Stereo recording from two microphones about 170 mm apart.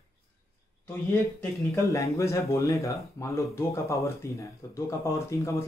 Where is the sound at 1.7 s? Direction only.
15° left (ahead or behind).